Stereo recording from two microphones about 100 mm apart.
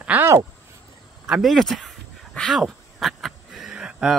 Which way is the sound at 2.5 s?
Centre (ahead or behind).